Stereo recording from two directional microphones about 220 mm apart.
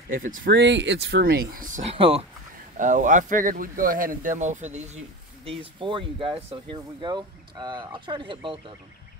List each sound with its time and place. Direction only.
0.1 s speech: 40° right (ahead or behind); by 8.7 s 20° right (ahead or behind)